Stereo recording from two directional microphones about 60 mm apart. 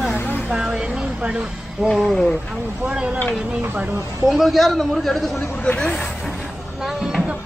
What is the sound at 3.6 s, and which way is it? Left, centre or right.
Speech, right.